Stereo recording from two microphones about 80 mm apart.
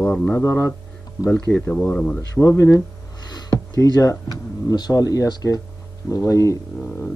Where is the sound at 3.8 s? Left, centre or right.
Left.